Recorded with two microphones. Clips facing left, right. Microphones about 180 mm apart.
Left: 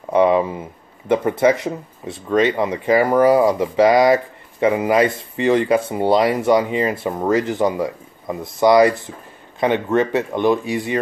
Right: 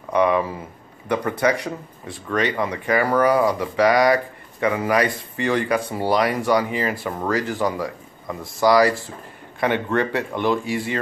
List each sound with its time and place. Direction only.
0.1 s speech: 25° left (ahead or behind)